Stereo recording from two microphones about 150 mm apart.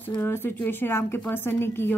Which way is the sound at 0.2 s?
15° left (ahead or behind).